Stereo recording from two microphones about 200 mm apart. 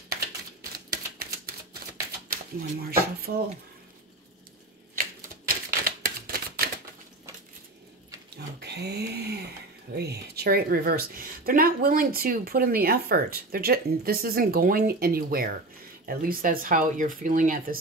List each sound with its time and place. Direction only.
0.8 s typewriter: 50° right (ahead or behind)
2.2 s speech: 45° right (ahead or behind)
5.9 s a sound: 50° right (ahead or behind)
8.5 s sewing machine: 55° right (ahead or behind)
9.9 s speech: 55° right (ahead or behind)